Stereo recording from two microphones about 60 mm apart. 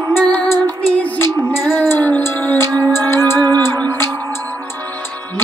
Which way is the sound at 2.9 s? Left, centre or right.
Left.